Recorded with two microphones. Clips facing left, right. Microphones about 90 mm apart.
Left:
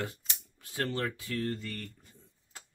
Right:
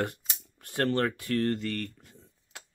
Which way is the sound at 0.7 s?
60° right (ahead or behind).